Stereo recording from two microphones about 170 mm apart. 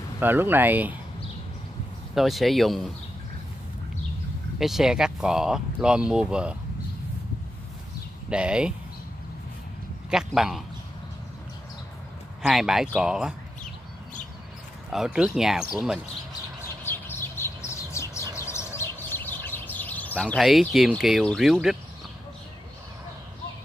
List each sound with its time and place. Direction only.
0.2 s speech: 10° right (ahead or behind)
2.1 s speech: centre (ahead or behind)
4.6 s speech: centre (ahead or behind)
8.3 s speech: 5° right (ahead or behind)
10.1 s speech: 5° right (ahead or behind)
12.4 s speech: centre (ahead or behind)
14.9 s speech: 5° right (ahead or behind)
16.8 s bird: 15° left (ahead or behind)
20.3 s speech: centre (ahead or behind)